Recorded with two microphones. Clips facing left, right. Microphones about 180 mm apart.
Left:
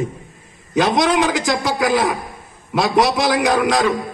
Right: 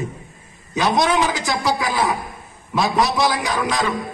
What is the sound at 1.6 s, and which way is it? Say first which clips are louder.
Speech: left 1 dB; 50° left (ahead or behind).